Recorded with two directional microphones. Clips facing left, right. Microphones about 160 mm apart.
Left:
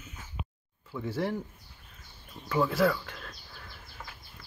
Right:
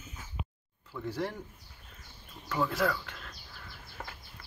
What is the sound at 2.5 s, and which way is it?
Speech, centre (ahead or behind).